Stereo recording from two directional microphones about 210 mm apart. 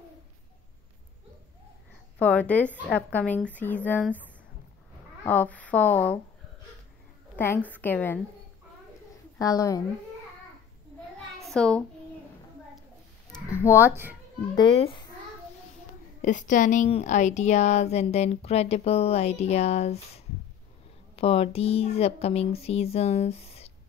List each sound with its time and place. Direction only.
2.1 s speech: 5° left (ahead or behind)
5.2 s speech: 10° left (ahead or behind)
7.3 s speech: 10° left (ahead or behind)
9.4 s speech: 15° left (ahead or behind)
11.4 s a child's voice: 5° left (ahead or behind)
13.3 s a sound: 10° left (ahead or behind)
14.5 s speech: 20° left (ahead or behind)
16.2 s speech: 35° left (ahead or behind)